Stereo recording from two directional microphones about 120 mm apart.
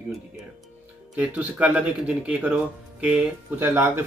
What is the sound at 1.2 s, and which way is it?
Speech, 10° right (ahead or behind).